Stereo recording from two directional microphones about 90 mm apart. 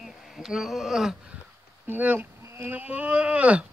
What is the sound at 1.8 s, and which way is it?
Speech, 20° right (ahead or behind).